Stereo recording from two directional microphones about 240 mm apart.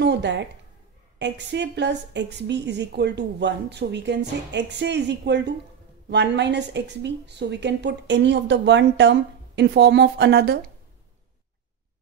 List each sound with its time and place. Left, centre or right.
0.0 s a woman's voice: right